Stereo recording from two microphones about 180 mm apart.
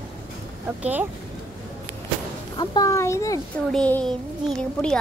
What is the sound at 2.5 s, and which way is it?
Speech, 20° left (ahead or behind).